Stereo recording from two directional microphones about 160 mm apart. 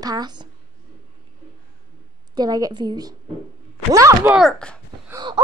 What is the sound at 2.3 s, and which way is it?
A woman's voice, 25° right (ahead or behind).